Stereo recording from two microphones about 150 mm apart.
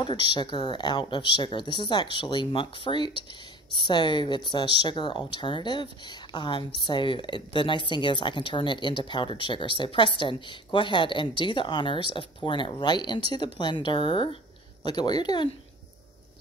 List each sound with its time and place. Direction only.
0.0 s speech: 30° left (ahead or behind)